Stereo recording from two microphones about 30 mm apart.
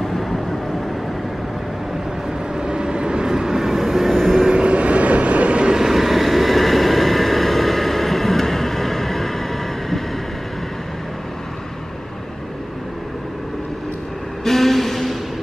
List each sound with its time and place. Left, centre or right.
0.1 s vehicle: centre
2.5 s vehicle: right
3.3 s vehicle: centre
4.6 s vehicle: right
5.8 s vehicle: centre
14.4 s a sound: centre